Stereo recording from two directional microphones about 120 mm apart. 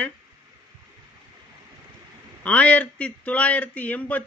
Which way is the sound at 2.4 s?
10° left (ahead or behind).